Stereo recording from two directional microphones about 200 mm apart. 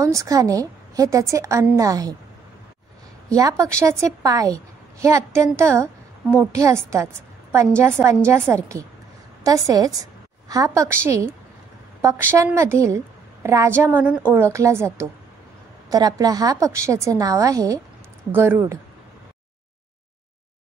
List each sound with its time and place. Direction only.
0.0 s a woman's voice: 15° right (ahead or behind)
3.3 s a woman's voice: 15° right (ahead or behind)
15.9 s a woman's voice: 20° right (ahead or behind)